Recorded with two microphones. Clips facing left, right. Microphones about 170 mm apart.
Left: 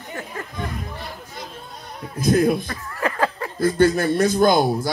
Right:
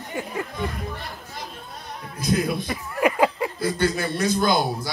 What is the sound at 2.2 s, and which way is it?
Speech, 50° left (ahead or behind).